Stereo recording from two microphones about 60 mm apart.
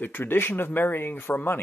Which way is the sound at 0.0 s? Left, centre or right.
Left.